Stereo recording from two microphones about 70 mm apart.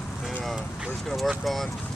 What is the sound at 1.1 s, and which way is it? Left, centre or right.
Speech, centre.